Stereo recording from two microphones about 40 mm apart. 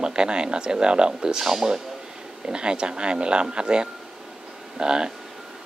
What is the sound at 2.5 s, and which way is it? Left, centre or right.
Speech, right.